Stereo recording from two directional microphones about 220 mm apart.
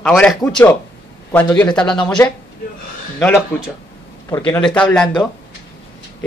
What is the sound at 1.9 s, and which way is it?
Speech, 20° left (ahead or behind).